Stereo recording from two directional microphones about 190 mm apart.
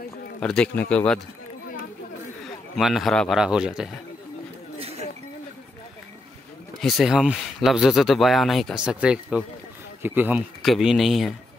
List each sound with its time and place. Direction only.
0.4 s speech: 5° left (ahead or behind)
2.4 s a man's voice: centre (ahead or behind)
4.7 s a sound: 30° right (ahead or behind)
6.8 s speech: centre (ahead or behind)